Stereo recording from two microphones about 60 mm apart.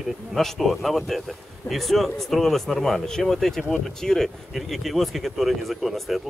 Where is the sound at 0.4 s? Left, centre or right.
Centre.